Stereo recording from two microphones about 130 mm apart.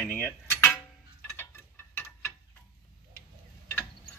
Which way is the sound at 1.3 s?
20° left (ahead or behind).